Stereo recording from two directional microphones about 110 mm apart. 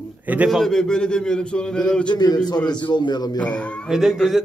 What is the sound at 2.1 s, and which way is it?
A man's voice, 40° left (ahead or behind).